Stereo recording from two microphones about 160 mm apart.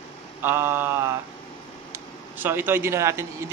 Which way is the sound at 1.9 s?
15° right (ahead or behind).